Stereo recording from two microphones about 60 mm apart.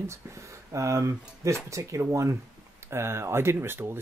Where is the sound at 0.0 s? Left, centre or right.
Right.